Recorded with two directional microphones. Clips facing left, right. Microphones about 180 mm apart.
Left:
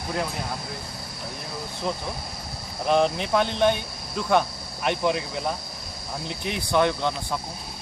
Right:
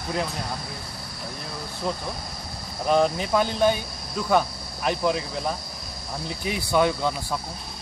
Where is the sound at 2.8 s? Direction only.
Centre (ahead or behind).